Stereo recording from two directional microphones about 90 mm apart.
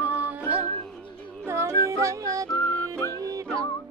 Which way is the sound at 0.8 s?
10° left (ahead or behind).